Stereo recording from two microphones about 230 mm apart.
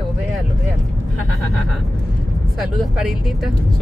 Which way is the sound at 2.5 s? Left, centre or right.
Centre.